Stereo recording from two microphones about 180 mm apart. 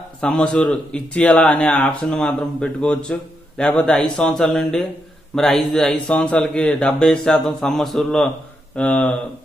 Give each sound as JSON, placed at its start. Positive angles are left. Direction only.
{"t": 0.2, "sound": "a man's voice", "side_deg": 5}